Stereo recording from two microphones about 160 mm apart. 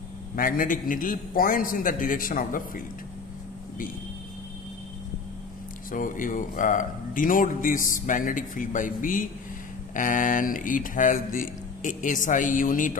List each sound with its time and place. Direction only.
0.4 s speech: 60° left (ahead or behind)
5.9 s speech: 60° left (ahead or behind)